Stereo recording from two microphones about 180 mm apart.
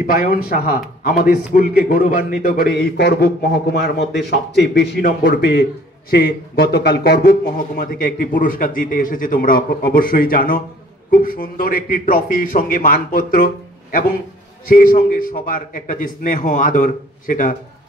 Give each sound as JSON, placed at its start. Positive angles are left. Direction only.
{"t": 0.0, "sound": "a man's voice", "side_deg": 55}
{"t": 14.7, "sound": "a man's voice", "side_deg": 50}